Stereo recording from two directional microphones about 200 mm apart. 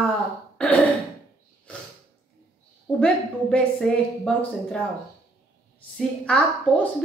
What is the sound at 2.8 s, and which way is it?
A woman's voice, 5° left (ahead or behind).